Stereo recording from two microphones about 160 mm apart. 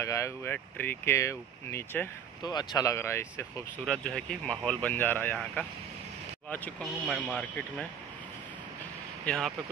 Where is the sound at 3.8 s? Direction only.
5° left (ahead or behind).